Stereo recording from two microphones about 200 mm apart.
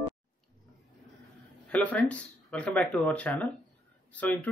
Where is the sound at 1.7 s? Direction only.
5° left (ahead or behind).